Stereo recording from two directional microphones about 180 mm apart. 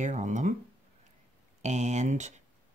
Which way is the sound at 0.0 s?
40° right (ahead or behind).